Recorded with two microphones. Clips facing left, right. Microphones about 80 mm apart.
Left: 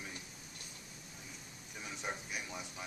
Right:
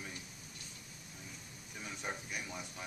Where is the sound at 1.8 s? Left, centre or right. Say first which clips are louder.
Even; centre.